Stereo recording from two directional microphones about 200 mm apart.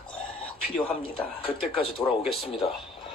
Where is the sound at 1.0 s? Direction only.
25° left (ahead or behind).